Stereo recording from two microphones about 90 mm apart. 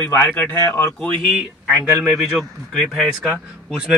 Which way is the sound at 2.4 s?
5° left (ahead or behind).